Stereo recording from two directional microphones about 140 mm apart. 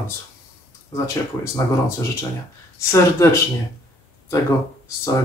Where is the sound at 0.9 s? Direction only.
20° left (ahead or behind).